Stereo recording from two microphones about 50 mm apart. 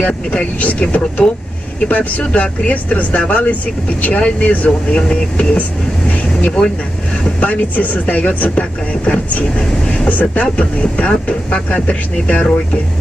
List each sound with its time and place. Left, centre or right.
0.0 s speech: left
4.5 s speech: left
5.0 s speech: centre